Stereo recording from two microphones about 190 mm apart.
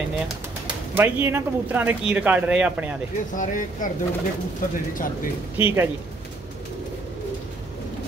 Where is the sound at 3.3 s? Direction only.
45° left (ahead or behind).